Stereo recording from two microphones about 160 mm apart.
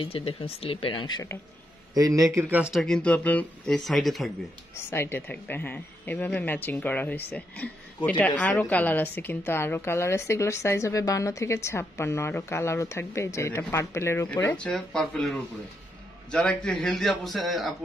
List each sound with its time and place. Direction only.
0.0 s speech: 35° left (ahead or behind)
2.0 s speech: 20° right (ahead or behind); by 4.3 s centre (ahead or behind)
4.9 s a woman's voice: 15° left (ahead or behind)